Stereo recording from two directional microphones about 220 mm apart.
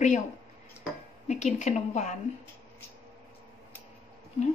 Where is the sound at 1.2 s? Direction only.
30° left (ahead or behind).